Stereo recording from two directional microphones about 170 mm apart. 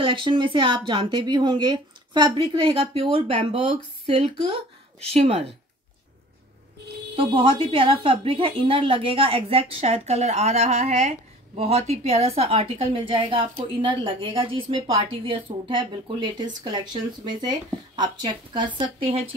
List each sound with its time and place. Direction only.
0.0 s a woman's voice: 30° right (ahead or behind)
7.2 s a woman's voice: 30° right (ahead or behind)